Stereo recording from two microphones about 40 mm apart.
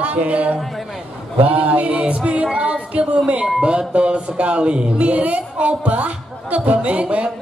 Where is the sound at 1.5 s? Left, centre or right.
Right.